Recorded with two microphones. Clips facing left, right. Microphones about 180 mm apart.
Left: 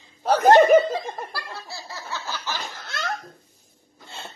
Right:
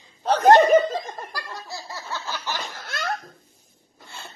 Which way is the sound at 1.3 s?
15° right (ahead or behind).